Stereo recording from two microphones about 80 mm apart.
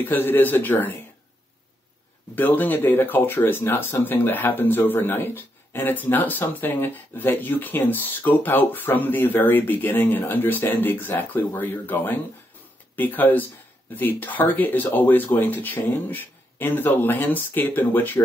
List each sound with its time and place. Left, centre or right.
0.0 s speech: left
2.3 s speech: left